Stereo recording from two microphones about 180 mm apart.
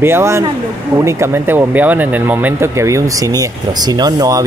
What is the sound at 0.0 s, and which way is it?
Speech, 15° right (ahead or behind).